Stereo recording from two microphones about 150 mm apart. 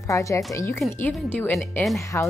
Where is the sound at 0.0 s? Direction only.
20° left (ahead or behind).